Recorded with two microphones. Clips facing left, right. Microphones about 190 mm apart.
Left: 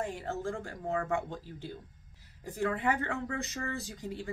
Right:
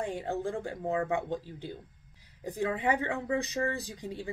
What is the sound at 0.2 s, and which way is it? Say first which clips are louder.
Speech: right 3 dB; 15° right (ahead or behind).